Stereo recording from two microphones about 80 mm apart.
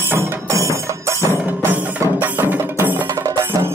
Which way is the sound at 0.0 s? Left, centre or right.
Right.